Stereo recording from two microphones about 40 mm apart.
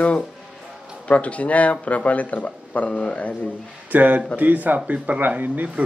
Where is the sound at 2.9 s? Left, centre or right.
Left.